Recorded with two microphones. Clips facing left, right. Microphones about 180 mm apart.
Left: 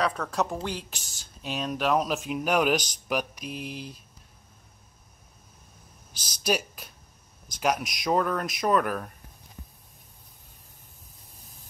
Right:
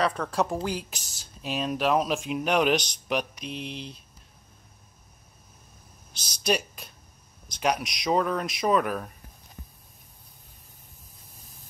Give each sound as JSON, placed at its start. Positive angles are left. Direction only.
{"t": 0.0, "sound": "speech", "side_deg": 0}
{"t": 0.9, "sound": "speech", "side_deg": -40}
{"t": 1.2, "sound": "speech", "side_deg": 0}
{"t": 6.1, "sound": "speech", "side_deg": 5}